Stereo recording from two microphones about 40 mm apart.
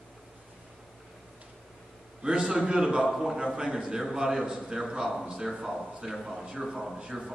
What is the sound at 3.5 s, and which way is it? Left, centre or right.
A man's voice, centre.